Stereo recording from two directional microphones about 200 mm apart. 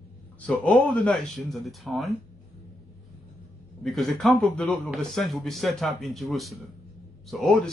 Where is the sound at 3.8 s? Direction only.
Centre (ahead or behind).